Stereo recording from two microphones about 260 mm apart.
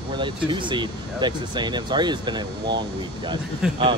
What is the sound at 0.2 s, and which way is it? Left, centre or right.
Speech, centre.